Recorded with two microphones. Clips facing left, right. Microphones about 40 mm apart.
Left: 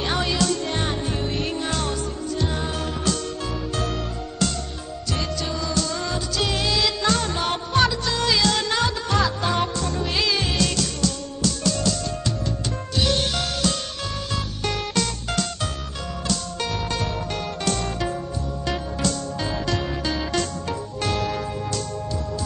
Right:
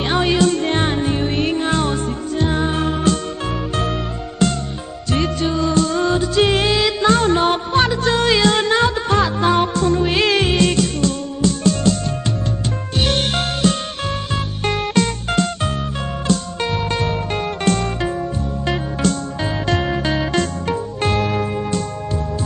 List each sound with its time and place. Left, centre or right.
0.0 s music: right
4.4 s music: right
6.8 s music: right